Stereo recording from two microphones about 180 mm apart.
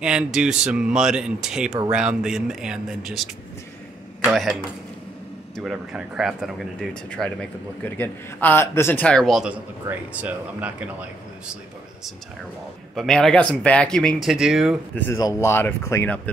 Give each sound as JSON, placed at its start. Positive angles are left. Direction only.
{"t": 0.0, "sound": "speech", "side_deg": -5}
{"t": 4.2, "sound": "speech", "side_deg": 0}
{"t": 12.9, "sound": "speech", "side_deg": 0}
{"t": 15.0, "sound": "speech", "side_deg": 15}